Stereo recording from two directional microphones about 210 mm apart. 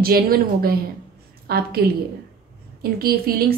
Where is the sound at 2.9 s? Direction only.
45° right (ahead or behind).